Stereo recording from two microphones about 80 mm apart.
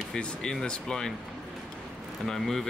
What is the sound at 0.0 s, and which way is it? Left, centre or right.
Speech, centre.